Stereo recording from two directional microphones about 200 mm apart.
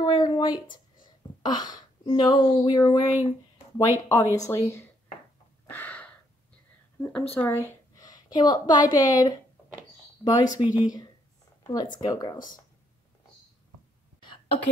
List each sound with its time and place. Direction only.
0.0 s speech: 20° left (ahead or behind)
5.7 s a sound: 10° left (ahead or behind)
7.0 s a woman's voice: 5° left (ahead or behind)